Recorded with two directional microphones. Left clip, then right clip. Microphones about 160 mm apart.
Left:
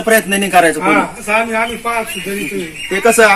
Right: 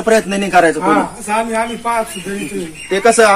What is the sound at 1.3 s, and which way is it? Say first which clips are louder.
Speech: left 2 dB; 35° right (ahead or behind).